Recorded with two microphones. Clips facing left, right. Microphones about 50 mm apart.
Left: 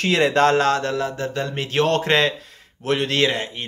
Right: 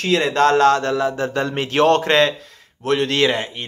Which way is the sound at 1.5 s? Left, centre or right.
Centre.